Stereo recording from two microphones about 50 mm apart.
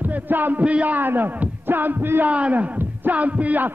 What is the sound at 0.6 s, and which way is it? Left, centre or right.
Speech, right.